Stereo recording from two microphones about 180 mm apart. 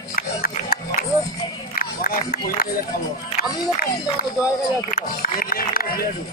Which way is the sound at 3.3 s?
55° left (ahead or behind).